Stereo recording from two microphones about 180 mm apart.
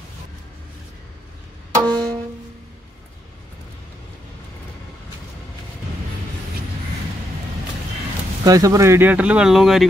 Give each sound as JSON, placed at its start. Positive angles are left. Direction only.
{"t": 1.8, "sound": "music", "side_deg": -25}
{"t": 8.5, "sound": "speech", "side_deg": -20}